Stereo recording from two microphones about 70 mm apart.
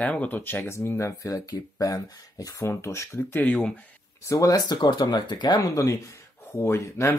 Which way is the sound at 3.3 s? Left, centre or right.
Left.